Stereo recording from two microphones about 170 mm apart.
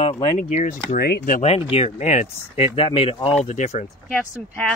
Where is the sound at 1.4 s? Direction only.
35° left (ahead or behind).